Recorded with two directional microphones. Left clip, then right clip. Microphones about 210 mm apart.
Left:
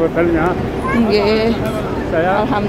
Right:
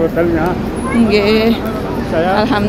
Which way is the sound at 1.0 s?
Centre (ahead or behind).